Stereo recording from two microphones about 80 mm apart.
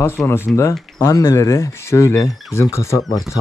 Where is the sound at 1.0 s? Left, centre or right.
Left.